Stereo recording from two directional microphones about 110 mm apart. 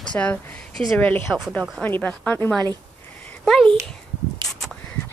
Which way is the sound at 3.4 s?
5° left (ahead or behind).